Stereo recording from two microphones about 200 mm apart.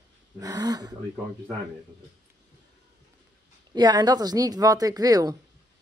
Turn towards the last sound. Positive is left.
turn(degrees=-20)  # may be behind; listen again after turning